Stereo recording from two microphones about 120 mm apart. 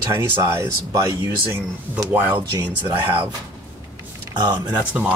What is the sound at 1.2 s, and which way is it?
Speech, 20° right (ahead or behind).